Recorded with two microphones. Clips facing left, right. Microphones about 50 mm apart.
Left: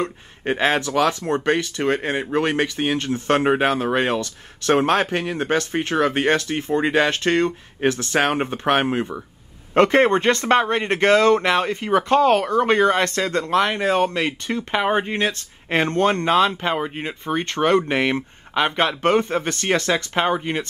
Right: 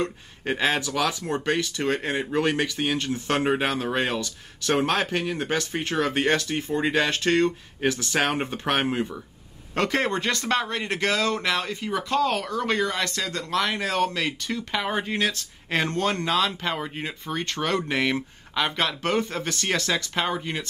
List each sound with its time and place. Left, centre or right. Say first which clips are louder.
0.4 s speech: left 4 dB; left
15.9 s speech: left 9 dB; left
17.2 s speech: left 8 dB; left